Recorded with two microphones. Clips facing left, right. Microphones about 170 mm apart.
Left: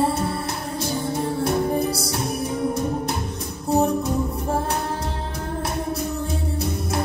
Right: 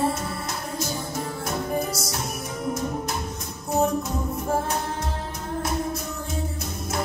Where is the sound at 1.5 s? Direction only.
30° left (ahead or behind).